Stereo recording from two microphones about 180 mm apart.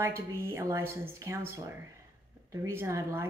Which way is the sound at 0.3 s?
15° right (ahead or behind).